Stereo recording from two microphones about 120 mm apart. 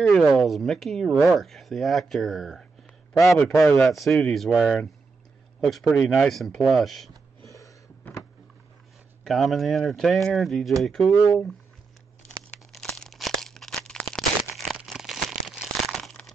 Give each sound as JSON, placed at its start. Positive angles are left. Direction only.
{"t": 0.0, "sound": "speech", "side_deg": 0}
{"t": 3.6, "sound": "speech", "side_deg": 5}
{"t": 7.4, "sound": "a sound", "side_deg": 25}
{"t": 9.2, "sound": "speech", "side_deg": 0}
{"t": 11.1, "sound": "speech", "side_deg": 15}
{"t": 12.3, "sound": "crumpling", "side_deg": 5}